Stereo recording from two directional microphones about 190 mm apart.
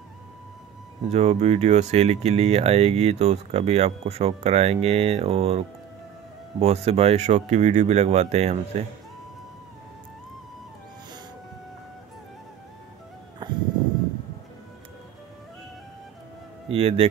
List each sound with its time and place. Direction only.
1.0 s speech: 35° right (ahead or behind)
6.6 s speech: 35° right (ahead or behind)
13.4 s a sound: 20° right (ahead or behind)
16.6 s speech: 30° right (ahead or behind)